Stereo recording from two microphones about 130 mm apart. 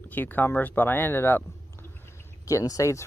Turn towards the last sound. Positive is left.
turn(degrees=25)  # may be behind; listen again after turning